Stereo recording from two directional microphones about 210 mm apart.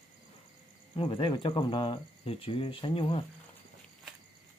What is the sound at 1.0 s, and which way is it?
Speech, 25° left (ahead or behind).